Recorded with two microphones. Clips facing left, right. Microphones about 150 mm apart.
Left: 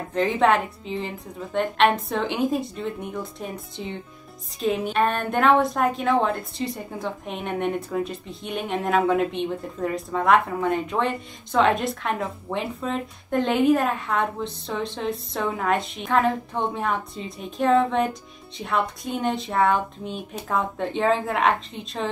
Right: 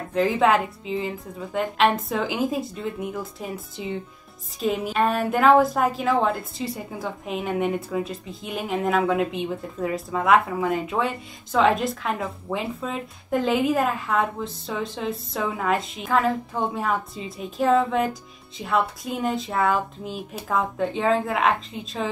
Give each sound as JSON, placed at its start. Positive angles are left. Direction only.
{"t": 0.1, "sound": "a woman's voice", "side_deg": -5}